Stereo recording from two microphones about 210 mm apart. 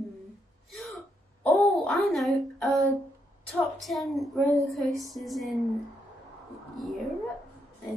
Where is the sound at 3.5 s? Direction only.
Centre (ahead or behind).